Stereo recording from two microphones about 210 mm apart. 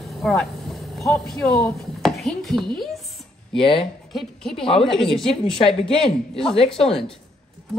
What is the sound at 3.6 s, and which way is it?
Speech, 25° left (ahead or behind).